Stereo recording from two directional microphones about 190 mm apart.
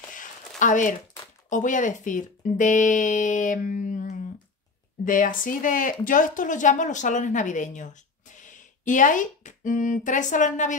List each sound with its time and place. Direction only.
0.6 s speech: 40° left (ahead or behind)